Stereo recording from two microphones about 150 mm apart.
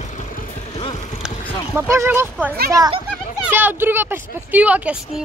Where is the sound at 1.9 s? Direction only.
15° right (ahead or behind).